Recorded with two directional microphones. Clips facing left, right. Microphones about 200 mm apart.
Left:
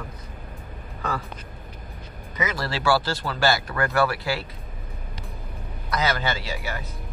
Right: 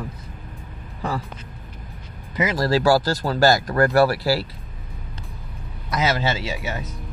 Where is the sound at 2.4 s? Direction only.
40° right (ahead or behind).